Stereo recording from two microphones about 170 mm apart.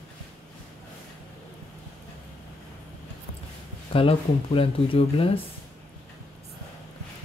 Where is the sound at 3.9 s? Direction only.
35° left (ahead or behind).